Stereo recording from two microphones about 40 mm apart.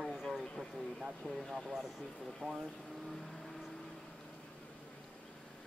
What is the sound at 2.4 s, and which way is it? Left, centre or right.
Speech, left.